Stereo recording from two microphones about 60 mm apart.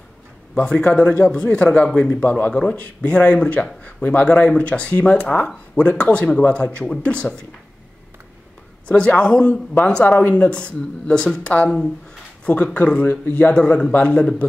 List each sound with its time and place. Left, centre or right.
0.6 s a man's voice: centre
2.2 s speech: left
8.8 s a man's voice: centre
11.5 s speech: left
13.5 s a man's voice: centre